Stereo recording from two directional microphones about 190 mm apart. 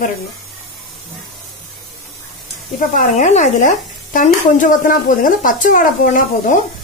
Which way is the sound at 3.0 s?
40° left (ahead or behind).